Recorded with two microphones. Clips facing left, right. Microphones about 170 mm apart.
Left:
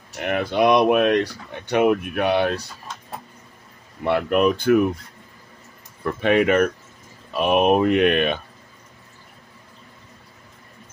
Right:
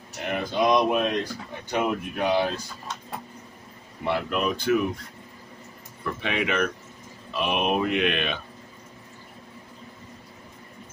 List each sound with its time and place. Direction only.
0.2 s speech: 65° left (ahead or behind)
4.0 s speech: 55° left (ahead or behind)
6.2 s speech: 50° left (ahead or behind)